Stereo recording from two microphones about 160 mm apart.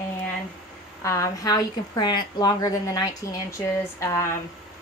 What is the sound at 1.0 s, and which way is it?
A woman's voice, 20° left (ahead or behind).